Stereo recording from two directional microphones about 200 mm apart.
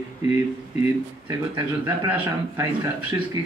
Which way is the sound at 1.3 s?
20° right (ahead or behind).